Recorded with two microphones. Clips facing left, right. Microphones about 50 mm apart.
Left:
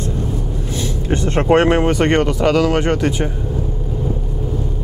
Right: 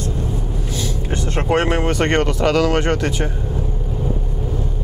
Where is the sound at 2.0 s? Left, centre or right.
Centre.